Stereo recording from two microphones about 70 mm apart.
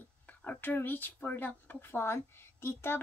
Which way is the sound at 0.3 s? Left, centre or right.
Left.